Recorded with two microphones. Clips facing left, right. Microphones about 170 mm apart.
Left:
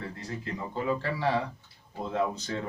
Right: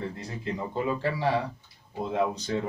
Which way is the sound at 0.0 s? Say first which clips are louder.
Right 3 dB; 20° right (ahead or behind).